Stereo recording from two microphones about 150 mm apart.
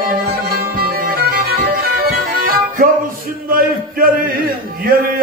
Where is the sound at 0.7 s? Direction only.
80° right.